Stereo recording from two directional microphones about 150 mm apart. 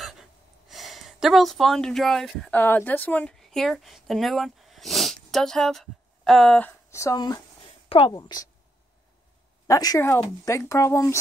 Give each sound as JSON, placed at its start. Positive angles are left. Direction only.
{"t": 0.0, "sound": "a sound", "side_deg": 0}
{"t": 2.5, "sound": "a woman's voice", "side_deg": 15}
{"t": 6.9, "sound": "speech", "side_deg": 20}
{"t": 9.7, "sound": "speech", "side_deg": 25}